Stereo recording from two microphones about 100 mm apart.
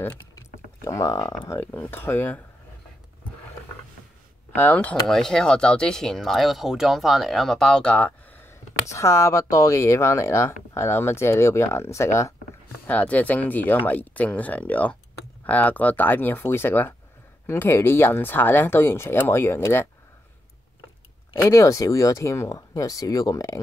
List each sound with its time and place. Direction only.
0.0 s typing: 30° left (ahead or behind)
1.5 s speech: 20° left (ahead or behind)
4.6 s speech: 15° left (ahead or behind)
5.0 s speech: 5° left (ahead or behind)
8.8 s speech: 30° left (ahead or behind)
12.8 s speech: 15° left (ahead or behind)
21.3 s speech: 30° left (ahead or behind)